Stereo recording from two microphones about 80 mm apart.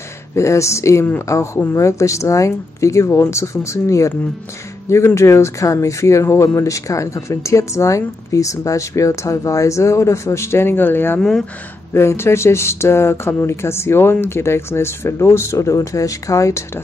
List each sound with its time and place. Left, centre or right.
0.4 s speech: left
11.1 s speech: centre
11.9 s speech: left